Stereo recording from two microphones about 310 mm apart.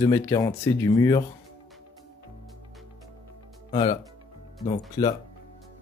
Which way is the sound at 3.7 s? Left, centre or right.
Centre.